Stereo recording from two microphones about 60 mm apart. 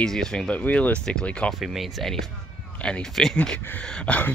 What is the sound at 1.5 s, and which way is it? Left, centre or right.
Speech, centre.